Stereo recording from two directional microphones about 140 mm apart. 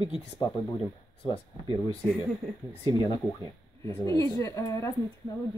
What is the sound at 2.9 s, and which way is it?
Speech, 25° left (ahead or behind).